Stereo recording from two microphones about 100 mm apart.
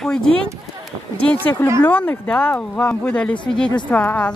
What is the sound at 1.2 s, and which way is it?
Speech, 15° left (ahead or behind).